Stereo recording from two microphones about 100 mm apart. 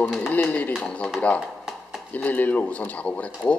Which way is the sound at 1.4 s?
5° right (ahead or behind).